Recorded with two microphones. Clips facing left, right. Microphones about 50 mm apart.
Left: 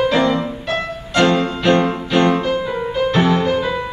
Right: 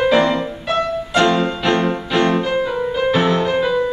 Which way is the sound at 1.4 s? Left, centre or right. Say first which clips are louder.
Left 2 dB; centre.